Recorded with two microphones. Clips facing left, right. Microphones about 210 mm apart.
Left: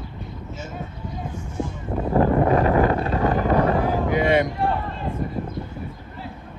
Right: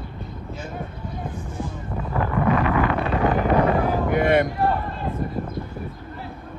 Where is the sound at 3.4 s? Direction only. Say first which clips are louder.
Even; 15° right (ahead or behind).